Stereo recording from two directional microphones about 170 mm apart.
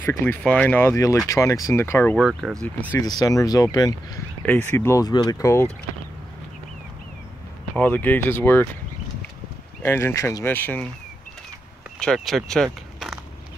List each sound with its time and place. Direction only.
0.0 s speech: 10° left (ahead or behind)
2.1 s speech: centre (ahead or behind)
2.6 s speech: 10° left (ahead or behind)
3.2 s speech: 20° left (ahead or behind)
4.5 s speech: 10° left (ahead or behind)
7.7 s speech: 10° left (ahead or behind)
9.8 s speech: 15° left (ahead or behind)
12.0 s speech: centre (ahead or behind)